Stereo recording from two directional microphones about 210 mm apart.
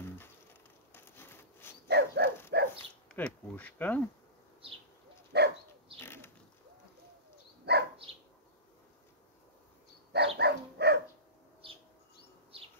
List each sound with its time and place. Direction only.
0.0 s insect: 10° left (ahead or behind)
1.9 s dog: 50° right (ahead or behind)
3.1 s speech: 5° left (ahead or behind)
5.3 s dog: 50° right (ahead or behind)
5.9 s a sound: 10° left (ahead or behind)
7.7 s dog: 50° right (ahead or behind)
10.1 s dog: 55° right (ahead or behind)